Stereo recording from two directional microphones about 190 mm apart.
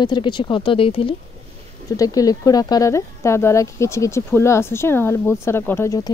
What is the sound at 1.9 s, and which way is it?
Speech, 20° left (ahead or behind).